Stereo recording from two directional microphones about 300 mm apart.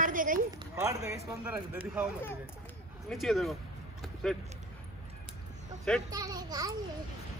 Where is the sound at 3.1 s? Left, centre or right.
Centre.